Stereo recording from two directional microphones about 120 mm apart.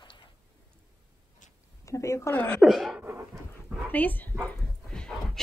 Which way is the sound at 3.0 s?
20° right (ahead or behind).